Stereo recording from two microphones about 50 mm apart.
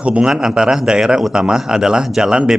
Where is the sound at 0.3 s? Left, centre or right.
Centre.